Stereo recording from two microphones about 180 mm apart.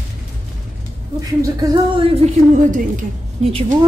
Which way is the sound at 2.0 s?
35° right (ahead or behind).